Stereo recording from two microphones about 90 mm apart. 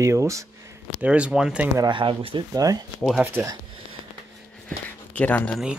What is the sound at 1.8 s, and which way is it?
Speech, 70° right (ahead or behind).